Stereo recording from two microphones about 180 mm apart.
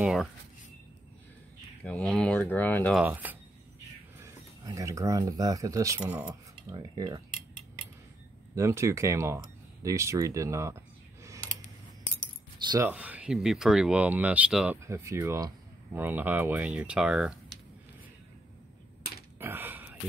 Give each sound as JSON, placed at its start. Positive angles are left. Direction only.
{"t": 0.0, "sound": "speech", "side_deg": -5}
{"t": 1.9, "sound": "speech", "side_deg": 5}
{"t": 3.0, "sound": "speech", "side_deg": -10}
{"t": 6.7, "sound": "cutlery", "side_deg": -20}
{"t": 8.5, "sound": "speech", "side_deg": -15}
{"t": 12.7, "sound": "speech", "side_deg": -10}
{"t": 19.3, "sound": "a sound", "side_deg": -10}